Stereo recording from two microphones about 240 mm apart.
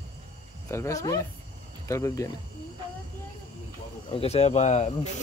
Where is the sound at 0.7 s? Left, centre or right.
Centre.